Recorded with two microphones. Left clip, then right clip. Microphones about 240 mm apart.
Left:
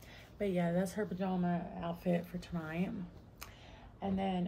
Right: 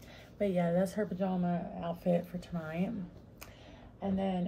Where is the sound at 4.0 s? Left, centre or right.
Left.